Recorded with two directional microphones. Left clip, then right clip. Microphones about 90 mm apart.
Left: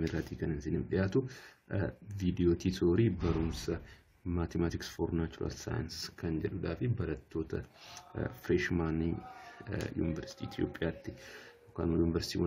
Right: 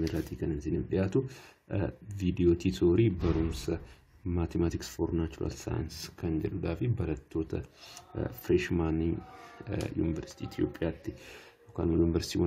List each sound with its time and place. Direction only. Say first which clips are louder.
0.1 s speech: right 3 dB; 15° right (ahead or behind)
5.0 s speech: right 3 dB; 5° right (ahead or behind)
5.4 s speech: right 3 dB; 25° right (ahead or behind)
6.3 s speech: right 4 dB; 45° right (ahead or behind)
8.1 s speech: right 4 dB; 15° right (ahead or behind)
11.7 s speech: right 4 dB; 30° right (ahead or behind)